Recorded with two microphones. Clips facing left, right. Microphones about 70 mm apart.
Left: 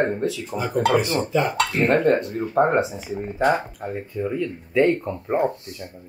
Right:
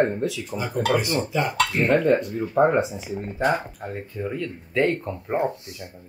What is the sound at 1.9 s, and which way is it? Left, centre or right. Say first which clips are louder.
Speech: even; left.